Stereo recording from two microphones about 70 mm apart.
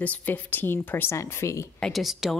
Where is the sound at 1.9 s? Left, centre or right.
Centre.